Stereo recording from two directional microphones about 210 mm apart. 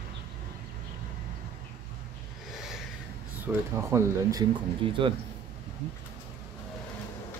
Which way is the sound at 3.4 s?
10° right (ahead or behind).